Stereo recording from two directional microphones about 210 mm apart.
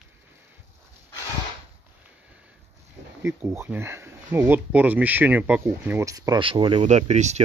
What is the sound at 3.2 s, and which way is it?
Speech, 10° right (ahead or behind).